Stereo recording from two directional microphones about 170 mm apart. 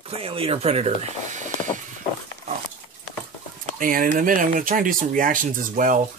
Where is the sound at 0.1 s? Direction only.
35° right (ahead or behind).